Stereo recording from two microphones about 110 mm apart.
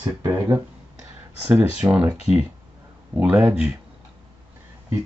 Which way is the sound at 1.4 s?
15° right (ahead or behind).